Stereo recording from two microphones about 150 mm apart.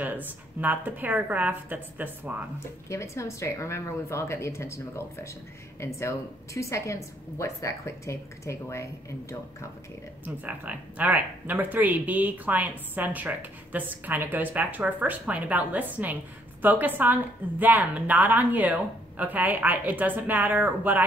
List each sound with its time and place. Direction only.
0.0 s speech: 10° right (ahead or behind)
2.9 s a woman's voice: 20° left (ahead or behind)
10.2 s speech: 10° right (ahead or behind)